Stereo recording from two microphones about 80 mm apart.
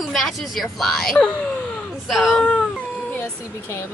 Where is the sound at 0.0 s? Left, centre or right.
Centre.